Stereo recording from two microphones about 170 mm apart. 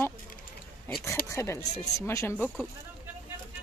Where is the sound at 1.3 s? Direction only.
15° left (ahead or behind).